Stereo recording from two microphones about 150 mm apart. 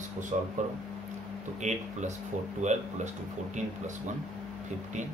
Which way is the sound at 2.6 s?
50° right (ahead or behind).